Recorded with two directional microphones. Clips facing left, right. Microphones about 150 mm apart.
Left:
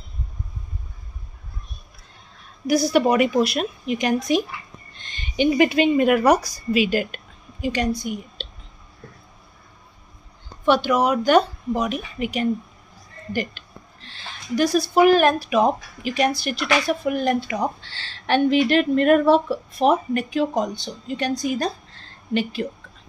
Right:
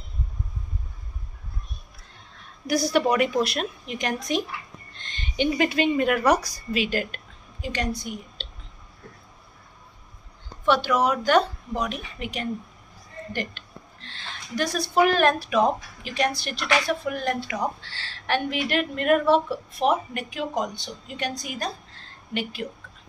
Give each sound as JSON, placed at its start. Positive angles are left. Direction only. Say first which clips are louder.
{"t": 2.6, "sound": "a woman's voice", "louder": "left 4 dB", "side_deg": 5}
{"t": 10.6, "sound": "a woman's voice", "louder": "left 3 dB", "side_deg": 15}